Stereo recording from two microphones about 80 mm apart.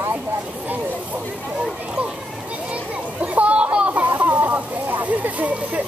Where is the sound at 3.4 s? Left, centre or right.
Centre.